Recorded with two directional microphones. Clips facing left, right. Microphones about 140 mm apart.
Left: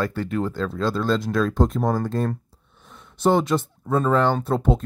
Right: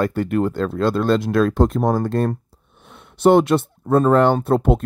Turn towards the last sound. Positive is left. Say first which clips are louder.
# right 4 dB
turn(degrees=-60)  # may be behind; listen again after turning